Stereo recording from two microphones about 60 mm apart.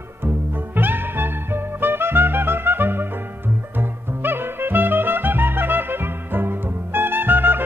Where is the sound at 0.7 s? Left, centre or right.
Right.